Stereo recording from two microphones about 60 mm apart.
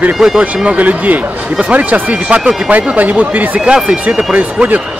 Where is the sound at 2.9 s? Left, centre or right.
Right.